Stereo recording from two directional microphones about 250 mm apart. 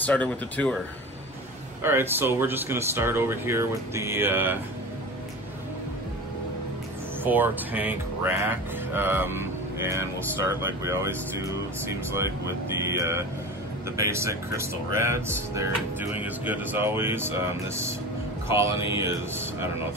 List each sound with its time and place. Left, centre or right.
0.0 s speech: centre
1.8 s speech: centre
7.2 s speech: centre
18.7 s mantra: left
18.9 s speech: centre